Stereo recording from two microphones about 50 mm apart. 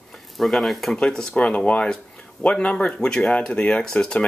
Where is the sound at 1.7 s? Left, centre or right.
Left.